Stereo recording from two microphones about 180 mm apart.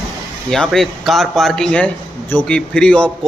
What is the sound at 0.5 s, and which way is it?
A man's voice, centre (ahead or behind).